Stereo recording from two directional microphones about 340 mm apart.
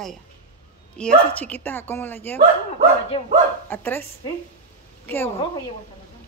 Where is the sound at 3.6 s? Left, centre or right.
Centre.